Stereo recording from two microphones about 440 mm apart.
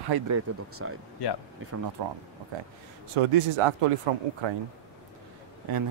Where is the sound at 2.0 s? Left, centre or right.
Right.